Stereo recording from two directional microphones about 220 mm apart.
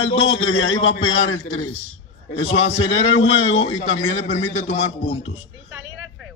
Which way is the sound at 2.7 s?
25° left (ahead or behind).